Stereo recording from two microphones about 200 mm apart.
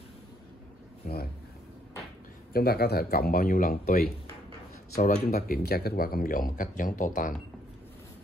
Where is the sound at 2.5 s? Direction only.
50° left (ahead or behind).